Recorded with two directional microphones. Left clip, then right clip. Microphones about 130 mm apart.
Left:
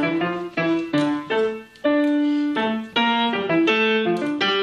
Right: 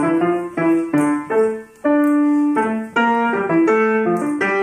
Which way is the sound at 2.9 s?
30° left (ahead or behind).